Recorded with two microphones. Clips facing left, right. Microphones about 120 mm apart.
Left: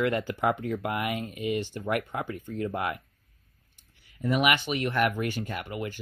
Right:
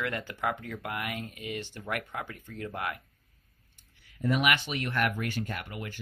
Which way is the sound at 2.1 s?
20° left (ahead or behind).